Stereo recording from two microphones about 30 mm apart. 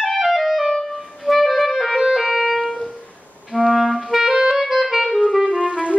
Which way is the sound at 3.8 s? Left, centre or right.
Centre.